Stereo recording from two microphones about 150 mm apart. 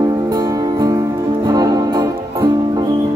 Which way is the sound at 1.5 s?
25° right (ahead or behind).